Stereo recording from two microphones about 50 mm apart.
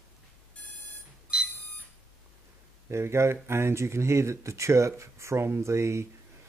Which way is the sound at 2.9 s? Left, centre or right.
Right.